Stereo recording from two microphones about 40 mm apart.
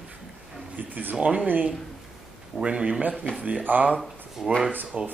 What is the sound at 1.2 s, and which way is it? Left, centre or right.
Speech, right.